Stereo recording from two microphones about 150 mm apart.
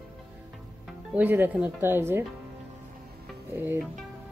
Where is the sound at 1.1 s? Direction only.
10° right (ahead or behind).